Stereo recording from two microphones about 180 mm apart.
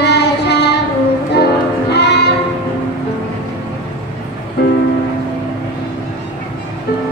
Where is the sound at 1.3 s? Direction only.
65° left (ahead or behind).